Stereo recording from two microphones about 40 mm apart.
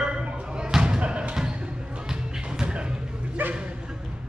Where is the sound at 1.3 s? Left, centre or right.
Right.